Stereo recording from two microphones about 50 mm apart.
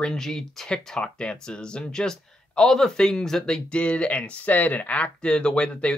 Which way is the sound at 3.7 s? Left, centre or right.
Left.